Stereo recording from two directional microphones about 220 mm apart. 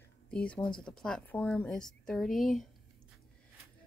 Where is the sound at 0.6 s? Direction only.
20° left (ahead or behind).